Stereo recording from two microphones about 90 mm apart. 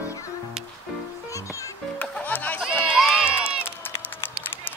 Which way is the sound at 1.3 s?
35° left (ahead or behind).